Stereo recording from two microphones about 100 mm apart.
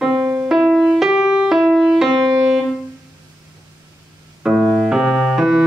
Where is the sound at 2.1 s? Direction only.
45° right (ahead or behind).